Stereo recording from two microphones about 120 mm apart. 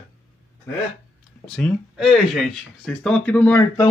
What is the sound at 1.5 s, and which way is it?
Speech, centre (ahead or behind).